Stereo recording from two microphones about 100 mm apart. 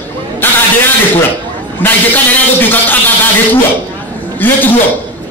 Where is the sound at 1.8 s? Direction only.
20° left (ahead or behind).